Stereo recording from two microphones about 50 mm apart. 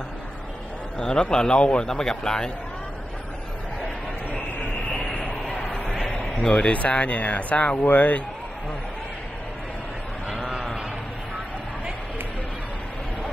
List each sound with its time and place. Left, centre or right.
0.9 s a man's voice: centre
5.0 s a sound: centre
6.5 s speech: left
7.7 s speech: left